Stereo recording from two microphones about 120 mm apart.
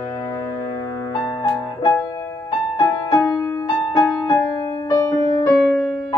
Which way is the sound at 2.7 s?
30° left (ahead or behind).